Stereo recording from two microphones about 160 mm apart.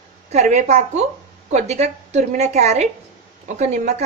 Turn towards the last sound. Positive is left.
turn(degrees=-50)  # may be behind; listen again after turning